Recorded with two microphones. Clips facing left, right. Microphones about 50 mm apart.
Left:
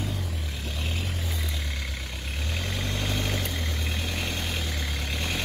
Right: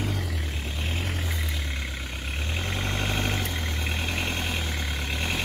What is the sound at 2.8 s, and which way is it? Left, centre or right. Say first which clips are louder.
Vehicle: right 2 dB; right.